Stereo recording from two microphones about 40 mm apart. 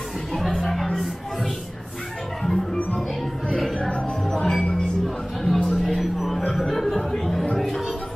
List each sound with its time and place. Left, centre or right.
0.3 s music: centre
2.4 s music: centre
3.4 s music: centre
4.3 s music: centre
5.9 s a sound: centre
6.5 s music: centre